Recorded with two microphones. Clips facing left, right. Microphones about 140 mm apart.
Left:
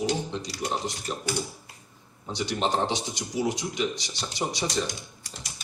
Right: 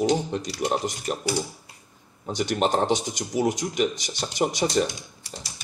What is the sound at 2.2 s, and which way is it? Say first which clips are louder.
Speech: right 4 dB; 50° right (ahead or behind).